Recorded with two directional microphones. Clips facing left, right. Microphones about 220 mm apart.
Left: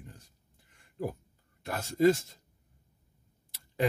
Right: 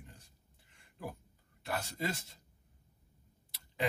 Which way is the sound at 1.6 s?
45° left (ahead or behind).